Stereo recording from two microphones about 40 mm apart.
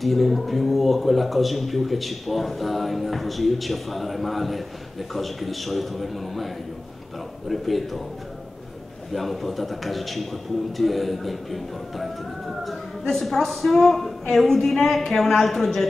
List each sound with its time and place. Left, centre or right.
0.0 s speech: centre
9.1 s a woman's voice: centre